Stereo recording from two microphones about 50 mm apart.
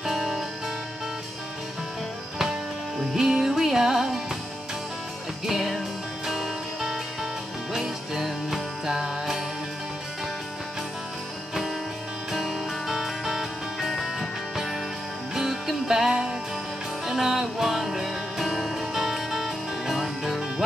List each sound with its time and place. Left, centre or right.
0.0 s music: centre
3.2 s music: centre
5.5 s music: centre
12.3 s music: centre
15.3 s music: centre